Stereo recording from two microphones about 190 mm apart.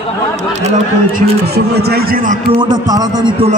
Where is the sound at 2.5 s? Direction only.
20° right (ahead or behind).